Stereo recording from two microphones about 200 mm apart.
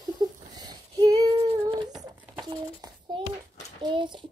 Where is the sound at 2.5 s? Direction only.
20° right (ahead or behind).